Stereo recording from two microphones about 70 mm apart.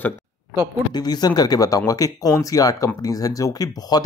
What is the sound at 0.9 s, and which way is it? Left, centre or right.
Speech, left.